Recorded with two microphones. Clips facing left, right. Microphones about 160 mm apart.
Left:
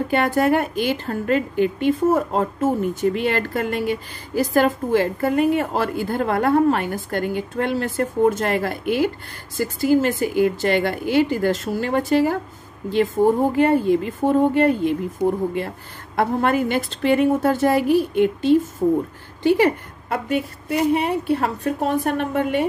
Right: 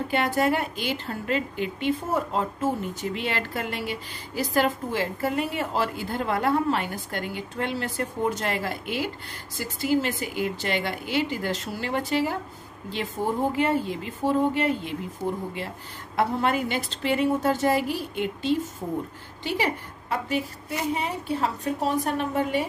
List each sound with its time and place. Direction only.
0.1 s a woman's voice: 55° left (ahead or behind)
15.2 s speech: 15° left (ahead or behind)
16.2 s a woman's voice: 50° left (ahead or behind)